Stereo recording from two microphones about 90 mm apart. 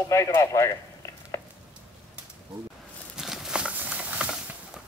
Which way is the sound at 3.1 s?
5° right (ahead or behind).